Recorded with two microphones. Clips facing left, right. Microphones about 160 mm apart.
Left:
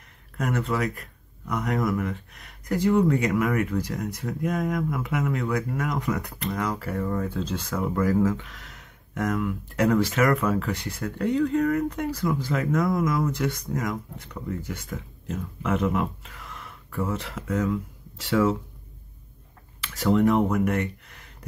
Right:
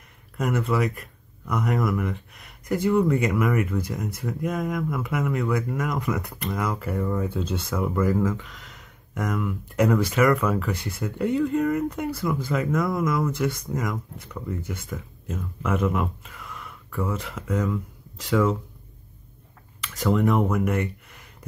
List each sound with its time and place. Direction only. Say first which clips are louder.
0.4 s speech: right 2 dB; centre (ahead or behind)
20.0 s speech: left 1 dB; centre (ahead or behind)